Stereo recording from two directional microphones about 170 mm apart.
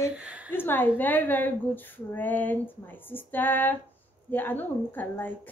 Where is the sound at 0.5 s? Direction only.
10° left (ahead or behind).